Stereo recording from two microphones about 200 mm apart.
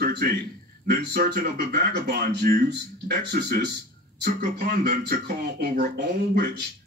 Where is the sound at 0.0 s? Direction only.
55° right (ahead or behind).